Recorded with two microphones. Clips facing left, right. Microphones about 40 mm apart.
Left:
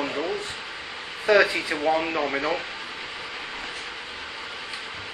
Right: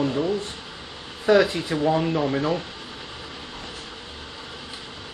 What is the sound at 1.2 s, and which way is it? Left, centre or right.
Speech, left.